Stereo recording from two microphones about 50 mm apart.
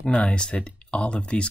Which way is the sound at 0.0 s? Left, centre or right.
Left.